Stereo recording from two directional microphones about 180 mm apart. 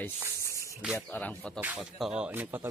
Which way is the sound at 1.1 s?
5° left (ahead or behind).